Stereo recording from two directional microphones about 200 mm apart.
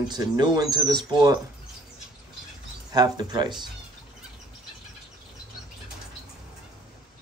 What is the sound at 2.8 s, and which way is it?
Speech, 20° right (ahead or behind).